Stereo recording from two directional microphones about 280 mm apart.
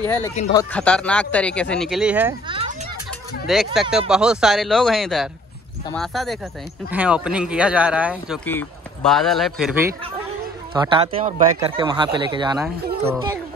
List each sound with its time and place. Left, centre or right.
0.0 s a man's voice: centre
2.4 s a sound: centre
3.4 s a man's voice: centre
10.7 s speech: centre
12.5 s a man's voice: centre